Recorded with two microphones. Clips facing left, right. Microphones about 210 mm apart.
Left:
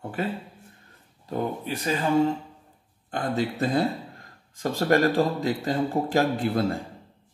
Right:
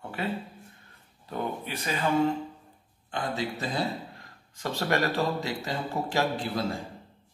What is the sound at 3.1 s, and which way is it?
Speech, 55° left (ahead or behind).